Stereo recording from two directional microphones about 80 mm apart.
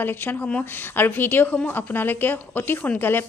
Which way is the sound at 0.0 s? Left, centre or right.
Left.